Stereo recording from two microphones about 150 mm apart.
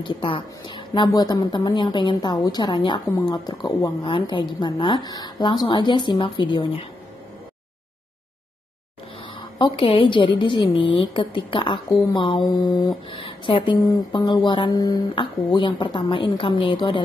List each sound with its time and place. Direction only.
0.0 s a woman's voice: 35° left (ahead or behind)
9.3 s a woman's voice: 30° left (ahead or behind)